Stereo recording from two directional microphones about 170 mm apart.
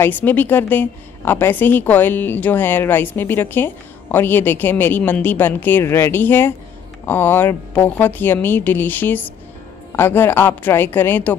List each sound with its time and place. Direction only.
0.0 s a woman's voice: 10° left (ahead or behind)